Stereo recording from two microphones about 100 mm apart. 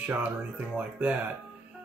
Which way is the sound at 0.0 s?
15° right (ahead or behind).